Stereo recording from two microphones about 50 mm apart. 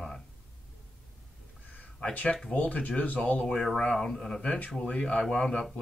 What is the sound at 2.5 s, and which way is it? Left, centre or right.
Speech, left.